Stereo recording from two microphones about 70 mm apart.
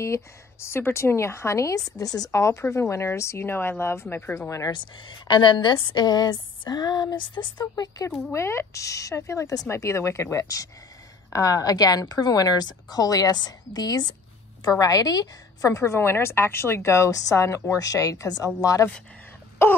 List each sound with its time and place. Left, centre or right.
0.0 s a woman's voice: left
5.3 s speech: left
7.6 s speech: left
8.3 s a woman's voice: left
9.7 s a woman's voice: left
11.3 s speech: left
14.6 s a woman's voice: left